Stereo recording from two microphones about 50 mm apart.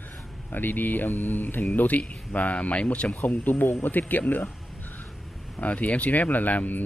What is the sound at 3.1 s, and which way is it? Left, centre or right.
Speech, left.